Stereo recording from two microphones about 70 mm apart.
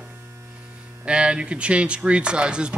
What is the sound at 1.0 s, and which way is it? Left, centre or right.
Speech, centre.